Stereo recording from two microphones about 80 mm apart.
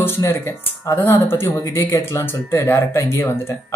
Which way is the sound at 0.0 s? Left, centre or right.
Left.